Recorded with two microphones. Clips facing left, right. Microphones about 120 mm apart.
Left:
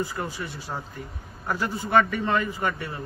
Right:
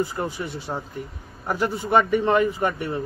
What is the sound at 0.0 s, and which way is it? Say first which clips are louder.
A man's voice: right 4 dB; 25° right (ahead or behind).